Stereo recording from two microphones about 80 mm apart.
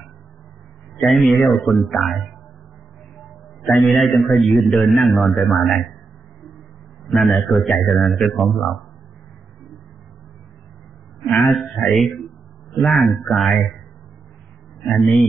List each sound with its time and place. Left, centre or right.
1.0 s a man's voice: centre
7.1 s speech: centre
11.4 s speech: centre
15.0 s speech: centre